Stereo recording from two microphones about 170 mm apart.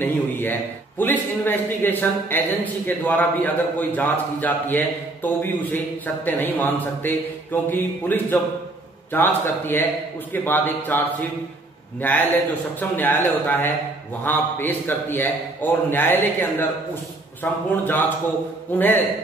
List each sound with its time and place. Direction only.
0.0 s a man's voice: 10° left (ahead or behind)
12.0 s a man's voice: 10° left (ahead or behind)